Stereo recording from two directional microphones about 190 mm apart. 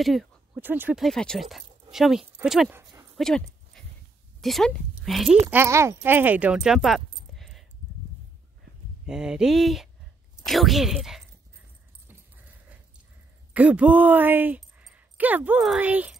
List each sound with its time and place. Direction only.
0.0 s a sound: centre (ahead or behind)
0.7 s speech: 10° right (ahead or behind)
2.8 s a sound: 20° right (ahead or behind)
3.2 s dog: centre (ahead or behind)
4.4 s a woman's voice: centre (ahead or behind)
5.5 s speech: 15° right (ahead or behind)
7.3 s a sound: centre (ahead or behind)
9.0 s speech: 5° right (ahead or behind)
13.5 s speech: 5° right (ahead or behind)